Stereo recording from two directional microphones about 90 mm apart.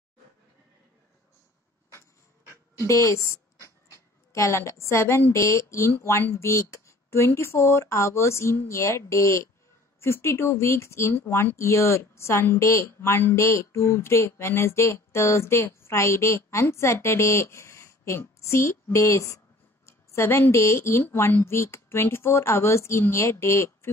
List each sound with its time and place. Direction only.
2.9 s speech: 35° left (ahead or behind)